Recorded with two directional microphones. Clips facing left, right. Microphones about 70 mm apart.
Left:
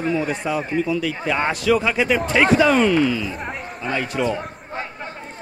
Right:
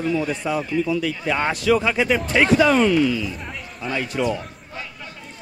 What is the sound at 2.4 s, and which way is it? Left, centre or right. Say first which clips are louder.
Speech: even; left.